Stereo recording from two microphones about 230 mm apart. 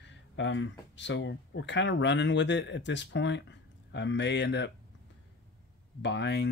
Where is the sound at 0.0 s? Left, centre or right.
Left.